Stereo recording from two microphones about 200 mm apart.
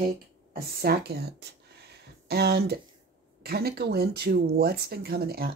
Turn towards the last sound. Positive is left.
turn(degrees=-50)  # may be behind; listen again after turning